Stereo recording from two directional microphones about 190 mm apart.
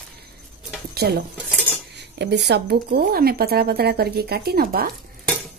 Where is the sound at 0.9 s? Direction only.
55° right (ahead or behind).